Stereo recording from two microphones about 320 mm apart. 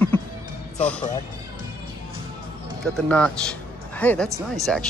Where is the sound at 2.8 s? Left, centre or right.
Centre.